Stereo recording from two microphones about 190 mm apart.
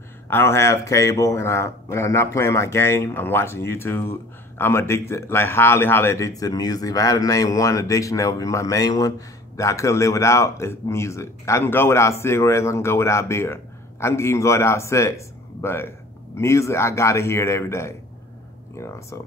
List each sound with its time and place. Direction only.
0.3 s speech: 15° left (ahead or behind)